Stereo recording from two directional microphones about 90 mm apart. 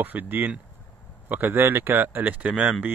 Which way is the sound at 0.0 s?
20° right (ahead or behind).